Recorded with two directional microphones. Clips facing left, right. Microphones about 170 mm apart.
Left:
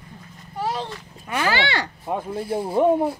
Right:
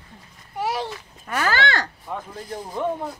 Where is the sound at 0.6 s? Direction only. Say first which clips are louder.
Right 1 dB; 10° right (ahead or behind).